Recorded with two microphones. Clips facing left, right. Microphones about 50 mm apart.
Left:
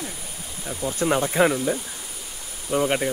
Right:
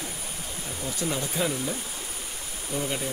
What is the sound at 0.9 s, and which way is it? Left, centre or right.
Speech, left.